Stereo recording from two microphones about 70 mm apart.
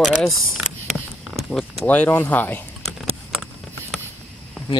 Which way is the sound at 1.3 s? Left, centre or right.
Centre.